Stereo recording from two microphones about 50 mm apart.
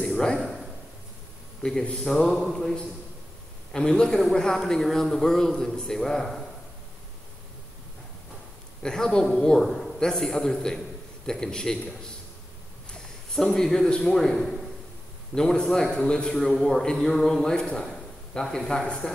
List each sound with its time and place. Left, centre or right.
0.0 s a sound: centre
1.6 s a man's voice: centre
3.7 s a man's voice: centre
8.8 s a man's voice: centre
9.6 s a man's voice: centre
12.9 s a sound: centre
13.8 s a man's voice: centre
14.1 s a man's voice: centre